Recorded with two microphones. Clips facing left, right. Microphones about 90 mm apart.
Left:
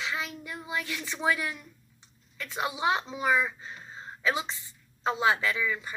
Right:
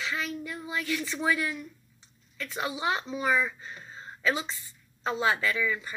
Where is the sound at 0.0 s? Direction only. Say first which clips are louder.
Right 1 dB; 20° left (ahead or behind).